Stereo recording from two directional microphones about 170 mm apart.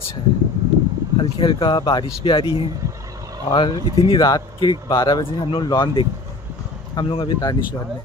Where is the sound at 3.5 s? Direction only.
35° left (ahead or behind).